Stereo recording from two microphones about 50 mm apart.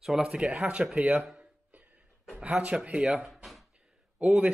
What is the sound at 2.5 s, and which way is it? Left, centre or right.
Speech, right.